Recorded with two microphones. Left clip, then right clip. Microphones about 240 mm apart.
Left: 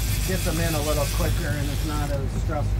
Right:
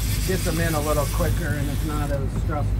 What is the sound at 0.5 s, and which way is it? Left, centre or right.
Speech, centre.